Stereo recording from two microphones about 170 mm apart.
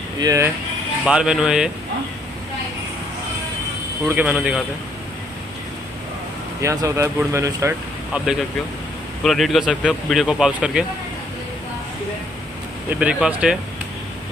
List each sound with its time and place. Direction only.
0.2 s speech: 20° right (ahead or behind)
1.0 s speech: 5° right (ahead or behind)
4.1 s speech: 10° right (ahead or behind)
6.6 s speech: 20° right (ahead or behind)
9.2 s speech: centre (ahead or behind)
13.0 s speech: 5° right (ahead or behind)